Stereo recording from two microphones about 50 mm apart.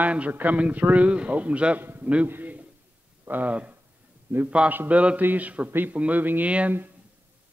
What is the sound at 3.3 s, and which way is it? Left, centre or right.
A man's voice, right.